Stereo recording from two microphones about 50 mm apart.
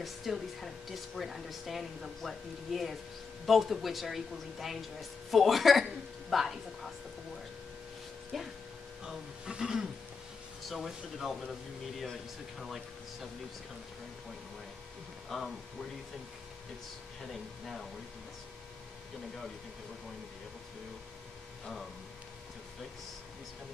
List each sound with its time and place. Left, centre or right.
0.0 s speech: centre
8.3 s speech: centre
9.0 s speech: centre
15.2 s speech: centre
17.3 s speech: centre